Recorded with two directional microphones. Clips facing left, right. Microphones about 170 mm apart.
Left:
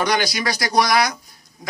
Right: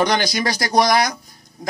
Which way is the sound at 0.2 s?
45° right (ahead or behind).